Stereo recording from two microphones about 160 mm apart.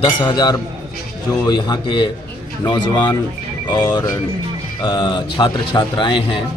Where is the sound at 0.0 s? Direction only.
30° left (ahead or behind).